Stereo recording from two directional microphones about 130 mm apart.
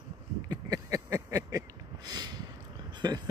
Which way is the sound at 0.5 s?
30° right (ahead or behind).